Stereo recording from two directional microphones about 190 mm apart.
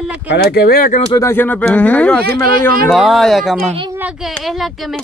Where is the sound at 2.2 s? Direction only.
50° right (ahead or behind).